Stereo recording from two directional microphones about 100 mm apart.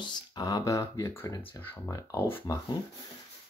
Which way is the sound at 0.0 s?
45° left (ahead or behind).